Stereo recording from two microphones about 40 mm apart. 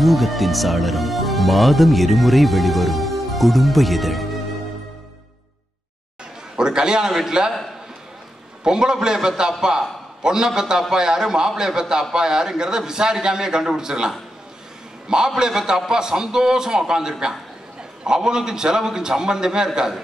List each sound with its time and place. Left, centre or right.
0.0 s speech: centre
6.5 s a man's voice: centre
8.6 s a man's voice: centre